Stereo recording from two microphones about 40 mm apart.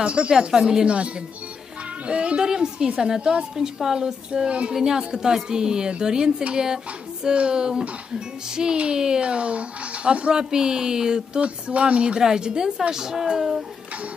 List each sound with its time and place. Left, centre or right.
0.0 s speech: right
0.5 s a woman's voice: centre
0.8 s speech: right
2.4 s a woman's voice: centre
4.5 s speech: right
4.7 s a woman's voice: centre; by 10.3 s right
10.3 s a woman's voice: centre
11.4 s a woman's voice: right; by 13.7 s centre